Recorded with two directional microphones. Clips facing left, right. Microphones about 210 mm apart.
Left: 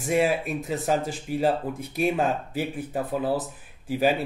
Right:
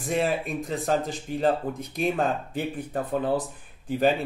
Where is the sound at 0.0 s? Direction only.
10° left (ahead or behind).